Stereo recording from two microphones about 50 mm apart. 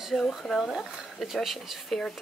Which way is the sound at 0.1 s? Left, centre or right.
Centre.